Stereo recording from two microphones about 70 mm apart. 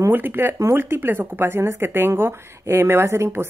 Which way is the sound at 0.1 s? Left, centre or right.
Right.